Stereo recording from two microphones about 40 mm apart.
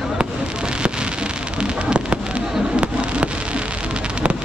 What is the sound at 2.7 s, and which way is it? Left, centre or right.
Fireworks, right.